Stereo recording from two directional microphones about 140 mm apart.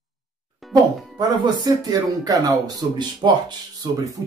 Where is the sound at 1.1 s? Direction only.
25° right (ahead or behind).